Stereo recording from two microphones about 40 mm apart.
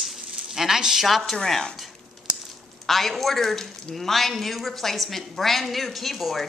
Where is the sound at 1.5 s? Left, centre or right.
Centre.